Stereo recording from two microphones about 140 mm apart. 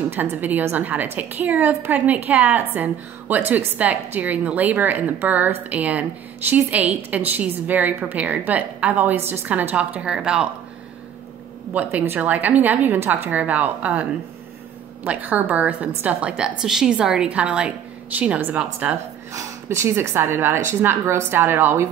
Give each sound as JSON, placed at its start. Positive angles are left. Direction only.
{"t": 0.1, "sound": "a woman's voice", "side_deg": -15}
{"t": 11.7, "sound": "a woman's voice", "side_deg": -10}
{"t": 15.0, "sound": "a woman's voice", "side_deg": -10}